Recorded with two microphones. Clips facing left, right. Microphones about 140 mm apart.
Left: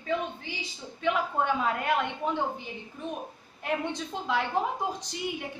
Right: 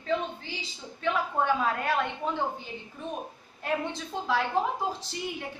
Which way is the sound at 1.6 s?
15° left (ahead or behind).